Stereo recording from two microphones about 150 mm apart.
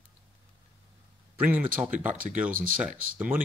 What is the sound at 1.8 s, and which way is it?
Speech, 10° right (ahead or behind).